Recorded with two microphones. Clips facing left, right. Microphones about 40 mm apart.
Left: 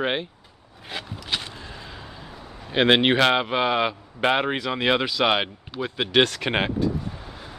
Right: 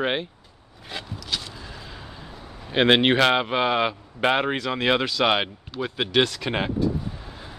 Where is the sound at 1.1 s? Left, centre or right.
Left.